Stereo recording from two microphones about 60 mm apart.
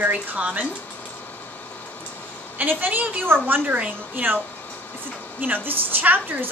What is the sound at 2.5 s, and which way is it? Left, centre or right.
Speech, right.